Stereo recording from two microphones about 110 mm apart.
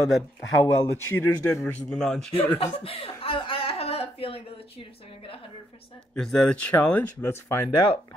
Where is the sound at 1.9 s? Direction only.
5° left (ahead or behind).